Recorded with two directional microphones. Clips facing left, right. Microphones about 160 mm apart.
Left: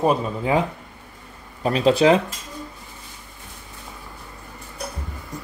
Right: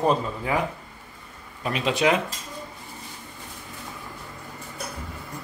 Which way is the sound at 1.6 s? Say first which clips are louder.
Left 7 dB; 35° left (ahead or behind).